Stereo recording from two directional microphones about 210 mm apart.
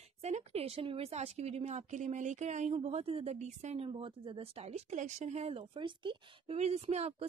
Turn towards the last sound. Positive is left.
turn(degrees=-30)  # may be behind; listen again after turning